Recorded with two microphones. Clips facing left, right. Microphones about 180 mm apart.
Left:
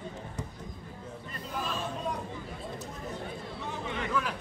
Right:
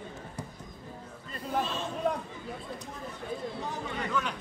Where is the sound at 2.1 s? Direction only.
60° right (ahead or behind).